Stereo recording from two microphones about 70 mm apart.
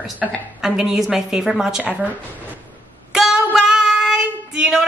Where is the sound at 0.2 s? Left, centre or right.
Centre.